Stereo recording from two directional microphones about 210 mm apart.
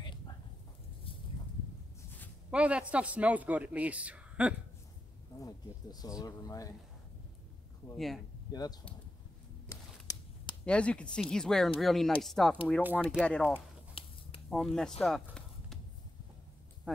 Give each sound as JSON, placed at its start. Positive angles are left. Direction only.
{"t": 2.5, "sound": "speech", "side_deg": -5}
{"t": 5.4, "sound": "speech", "side_deg": 15}
{"t": 8.5, "sound": "speech", "side_deg": 20}
{"t": 9.7, "sound": "a sound", "side_deg": 15}
{"t": 10.6, "sound": "speech", "side_deg": 5}
{"t": 13.5, "sound": "a sound", "side_deg": 25}
{"t": 14.5, "sound": "speech", "side_deg": 0}
{"t": 16.9, "sound": "music", "side_deg": 5}